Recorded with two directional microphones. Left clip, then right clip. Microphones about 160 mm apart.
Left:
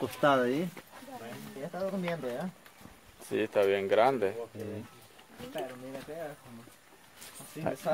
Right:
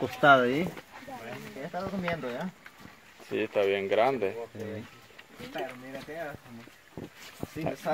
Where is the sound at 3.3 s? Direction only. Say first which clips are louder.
Even; 5° left (ahead or behind).